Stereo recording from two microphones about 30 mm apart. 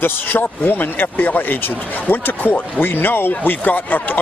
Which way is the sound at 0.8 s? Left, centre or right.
Left.